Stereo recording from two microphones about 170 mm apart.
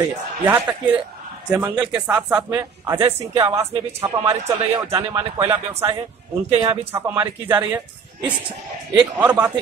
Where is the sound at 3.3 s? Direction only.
20° right (ahead or behind).